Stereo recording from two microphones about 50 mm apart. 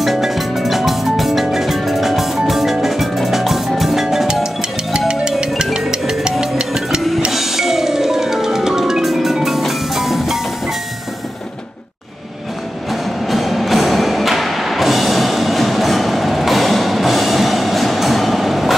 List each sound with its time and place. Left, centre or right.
0.0 s music: centre
13.3 s music: centre